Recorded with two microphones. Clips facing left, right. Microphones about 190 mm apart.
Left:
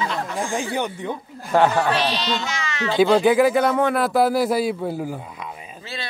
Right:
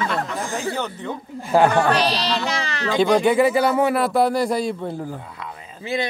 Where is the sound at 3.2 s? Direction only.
Centre (ahead or behind).